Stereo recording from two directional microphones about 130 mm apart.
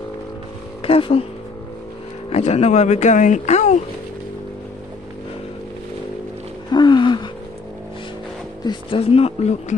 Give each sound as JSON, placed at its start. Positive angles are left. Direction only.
{"t": 0.8, "sound": "speech", "side_deg": 45}
{"t": 2.2, "sound": "speech", "side_deg": 55}
{"t": 6.7, "sound": "a sound", "side_deg": 35}
{"t": 8.6, "sound": "speech", "side_deg": 45}